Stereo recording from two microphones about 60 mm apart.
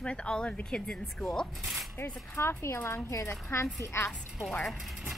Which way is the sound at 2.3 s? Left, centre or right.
Left.